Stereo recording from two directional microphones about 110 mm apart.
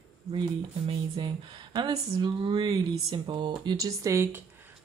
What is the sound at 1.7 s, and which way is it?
Speech, 40° right (ahead or behind).